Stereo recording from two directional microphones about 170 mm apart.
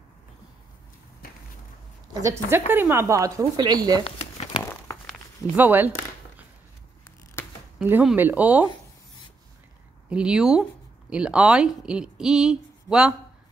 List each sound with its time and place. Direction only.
2.2 s speech: 15° right (ahead or behind)
4.0 s a sound: 35° left (ahead or behind)
5.6 s speech: 10° right (ahead or behind)
7.8 s speech: 5° right (ahead or behind)
10.0 s speech: 5° right (ahead or behind)